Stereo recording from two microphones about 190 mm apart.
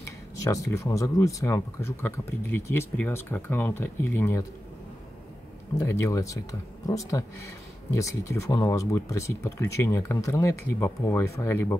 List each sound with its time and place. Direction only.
0.0 s speech: 15° left (ahead or behind)
5.8 s speech: 15° left (ahead or behind)